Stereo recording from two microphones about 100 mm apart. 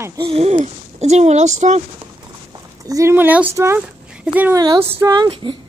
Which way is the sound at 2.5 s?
35° right (ahead or behind).